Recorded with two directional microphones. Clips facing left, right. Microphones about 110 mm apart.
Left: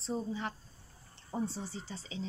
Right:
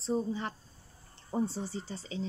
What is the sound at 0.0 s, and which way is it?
Speech, 40° right (ahead or behind).